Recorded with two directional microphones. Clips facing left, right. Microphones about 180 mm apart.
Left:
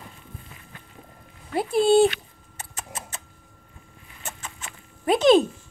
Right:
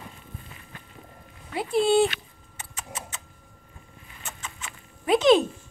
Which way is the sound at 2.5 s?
35° left (ahead or behind).